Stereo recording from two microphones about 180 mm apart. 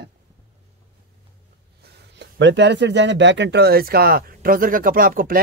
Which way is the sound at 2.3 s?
80° right.